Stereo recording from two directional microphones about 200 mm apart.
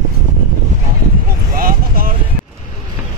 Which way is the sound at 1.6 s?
45° right (ahead or behind).